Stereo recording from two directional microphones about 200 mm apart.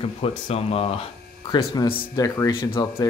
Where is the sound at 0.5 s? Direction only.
30° left (ahead or behind).